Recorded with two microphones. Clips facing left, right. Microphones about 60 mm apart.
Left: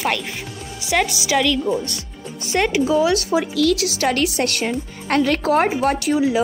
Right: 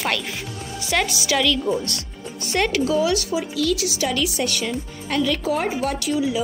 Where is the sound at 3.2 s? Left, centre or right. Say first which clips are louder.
Left 5 dB; left.